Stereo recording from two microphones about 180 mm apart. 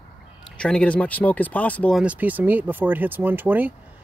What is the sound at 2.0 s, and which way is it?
Speech, 10° right (ahead or behind).